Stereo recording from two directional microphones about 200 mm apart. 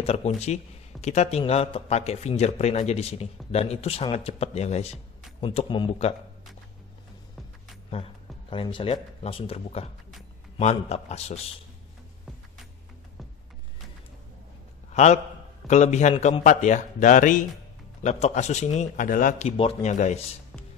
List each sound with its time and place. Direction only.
0.0 s a man's voice: 30° left (ahead or behind)
7.9 s speech: 30° left (ahead or behind)
14.9 s a sound: 35° left (ahead or behind)
15.6 s speech: 35° left (ahead or behind)